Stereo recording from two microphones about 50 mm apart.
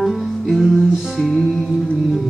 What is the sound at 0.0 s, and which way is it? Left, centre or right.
Music, centre.